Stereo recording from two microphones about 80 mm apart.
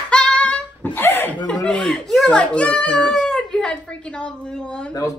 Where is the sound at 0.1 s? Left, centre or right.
Centre.